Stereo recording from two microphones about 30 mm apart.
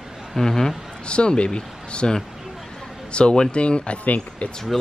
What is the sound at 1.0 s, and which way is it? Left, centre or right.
Speech, left.